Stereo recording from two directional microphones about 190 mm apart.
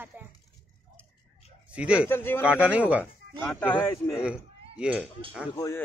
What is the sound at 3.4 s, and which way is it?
Speech, 10° left (ahead or behind).